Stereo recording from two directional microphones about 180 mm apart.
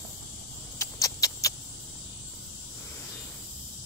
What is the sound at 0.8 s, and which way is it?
Rodents, 20° left (ahead or behind).